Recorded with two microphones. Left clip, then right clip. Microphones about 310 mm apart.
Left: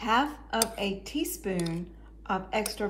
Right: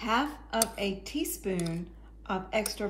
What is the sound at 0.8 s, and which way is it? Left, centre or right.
Speech, right.